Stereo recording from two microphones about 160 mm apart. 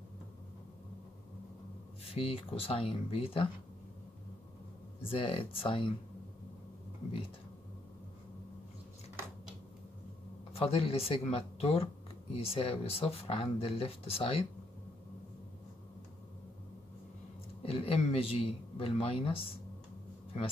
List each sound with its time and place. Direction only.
2.0 s speech: 40° left (ahead or behind)
5.0 s speech: 35° left (ahead or behind)
10.5 s speech: 40° left (ahead or behind)
17.6 s speech: 35° left (ahead or behind)